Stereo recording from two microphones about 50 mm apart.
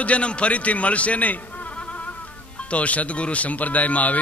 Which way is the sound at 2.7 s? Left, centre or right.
Left.